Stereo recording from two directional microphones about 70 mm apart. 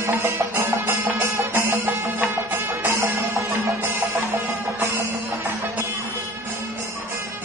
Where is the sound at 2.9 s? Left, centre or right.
Right.